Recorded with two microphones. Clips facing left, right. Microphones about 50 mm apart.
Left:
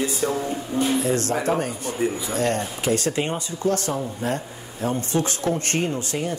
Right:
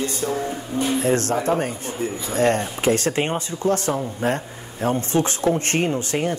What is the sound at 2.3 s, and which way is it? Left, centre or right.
Speech, right.